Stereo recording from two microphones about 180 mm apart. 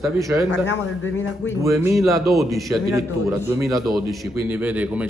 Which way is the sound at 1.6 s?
15° right (ahead or behind).